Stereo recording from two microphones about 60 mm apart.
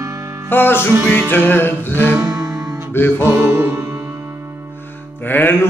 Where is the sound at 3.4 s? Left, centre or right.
Right.